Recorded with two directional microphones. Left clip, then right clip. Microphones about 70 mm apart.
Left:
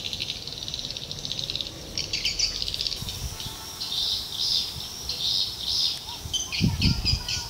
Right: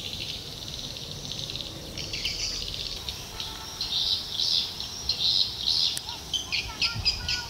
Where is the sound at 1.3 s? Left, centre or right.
Left.